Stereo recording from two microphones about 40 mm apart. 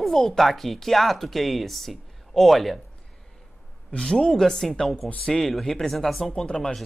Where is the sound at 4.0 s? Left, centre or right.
Centre.